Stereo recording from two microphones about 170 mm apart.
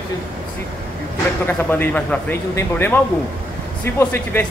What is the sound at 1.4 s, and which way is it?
A man's voice, 10° left (ahead or behind).